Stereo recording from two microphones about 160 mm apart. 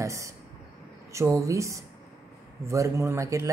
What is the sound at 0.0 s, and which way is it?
Speech, 20° right (ahead or behind).